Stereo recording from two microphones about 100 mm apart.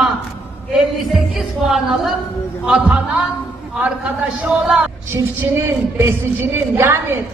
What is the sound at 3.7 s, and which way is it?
A man's voice, 10° right (ahead or behind).